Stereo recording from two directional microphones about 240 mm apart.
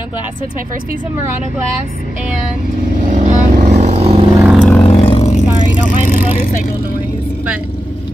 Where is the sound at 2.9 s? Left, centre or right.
Right.